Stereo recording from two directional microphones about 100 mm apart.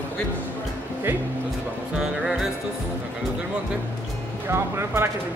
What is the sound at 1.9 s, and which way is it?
Music, 5° right (ahead or behind).